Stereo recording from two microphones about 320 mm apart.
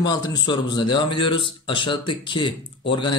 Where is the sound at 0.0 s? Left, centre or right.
Centre.